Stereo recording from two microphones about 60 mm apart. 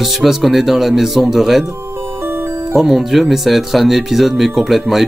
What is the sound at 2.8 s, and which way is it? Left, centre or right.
Speech, centre.